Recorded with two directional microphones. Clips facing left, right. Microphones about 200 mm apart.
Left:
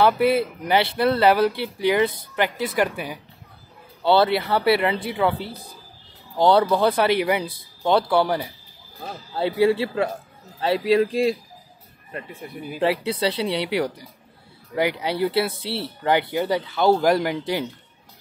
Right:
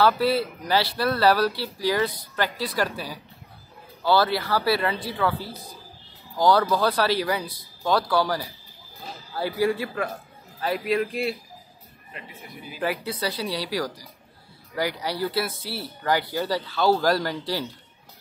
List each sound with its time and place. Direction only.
0.0 s speech: 20° left (ahead or behind)
12.1 s speech: 50° left (ahead or behind)
12.8 s speech: 25° left (ahead or behind)